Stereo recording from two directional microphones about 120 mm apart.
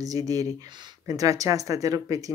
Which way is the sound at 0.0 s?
30° right (ahead or behind).